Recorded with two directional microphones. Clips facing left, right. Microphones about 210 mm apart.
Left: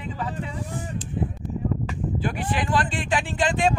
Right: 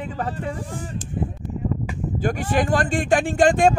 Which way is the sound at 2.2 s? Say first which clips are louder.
Right 7 dB; 45° right (ahead or behind).